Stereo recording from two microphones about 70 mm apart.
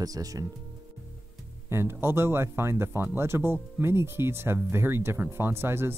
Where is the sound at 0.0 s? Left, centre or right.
Right.